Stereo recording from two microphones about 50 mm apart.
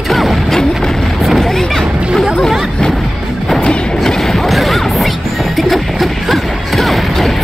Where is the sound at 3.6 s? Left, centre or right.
Centre.